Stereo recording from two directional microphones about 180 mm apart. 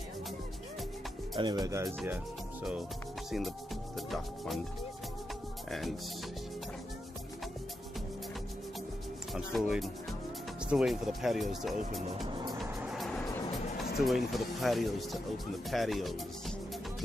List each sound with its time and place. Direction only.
1.3 s speech: 20° right (ahead or behind)
3.3 s speech: centre (ahead or behind)
5.7 s speech: centre (ahead or behind)
9.3 s speech: centre (ahead or behind)
12.5 s vehicle: centre (ahead or behind)
13.9 s speech: centre (ahead or behind)